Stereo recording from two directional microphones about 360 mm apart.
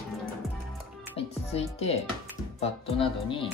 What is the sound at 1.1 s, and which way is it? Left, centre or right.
Music, centre.